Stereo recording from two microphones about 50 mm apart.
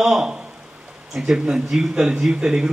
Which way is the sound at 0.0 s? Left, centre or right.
Centre.